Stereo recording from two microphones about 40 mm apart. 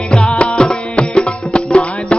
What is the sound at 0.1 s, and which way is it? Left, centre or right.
Music, left.